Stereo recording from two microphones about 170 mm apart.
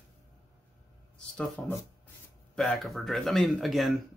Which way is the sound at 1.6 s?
10° left (ahead or behind).